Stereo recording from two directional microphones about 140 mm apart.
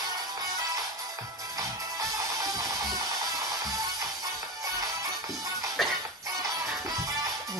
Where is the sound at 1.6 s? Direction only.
25° right (ahead or behind).